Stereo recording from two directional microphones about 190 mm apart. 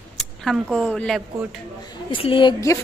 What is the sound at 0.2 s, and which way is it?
Speech, centre (ahead or behind).